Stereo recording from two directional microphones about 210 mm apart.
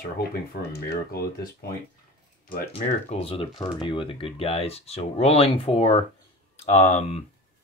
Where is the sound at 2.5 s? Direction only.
30° left (ahead or behind).